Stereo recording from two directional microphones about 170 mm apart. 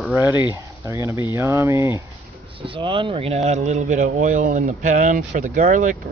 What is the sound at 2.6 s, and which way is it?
Speech, 30° right (ahead or behind).